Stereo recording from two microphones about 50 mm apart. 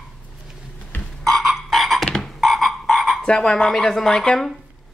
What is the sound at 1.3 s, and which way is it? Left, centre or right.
Frog, centre.